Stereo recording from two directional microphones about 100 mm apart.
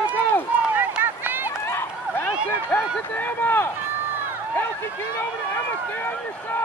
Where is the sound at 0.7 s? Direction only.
20° right (ahead or behind).